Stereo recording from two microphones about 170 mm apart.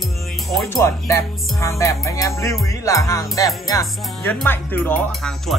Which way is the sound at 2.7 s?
20° left (ahead or behind).